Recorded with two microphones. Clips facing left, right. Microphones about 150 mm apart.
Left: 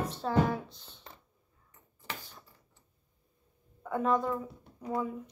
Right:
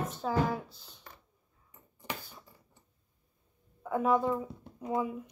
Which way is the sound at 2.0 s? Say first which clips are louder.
Right 3 dB; 10° right (ahead or behind).